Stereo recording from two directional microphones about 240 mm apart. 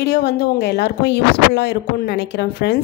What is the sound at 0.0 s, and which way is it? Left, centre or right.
Speech, left.